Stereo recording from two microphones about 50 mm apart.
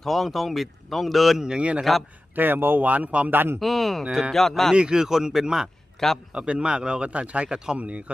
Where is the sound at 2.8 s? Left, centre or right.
Right.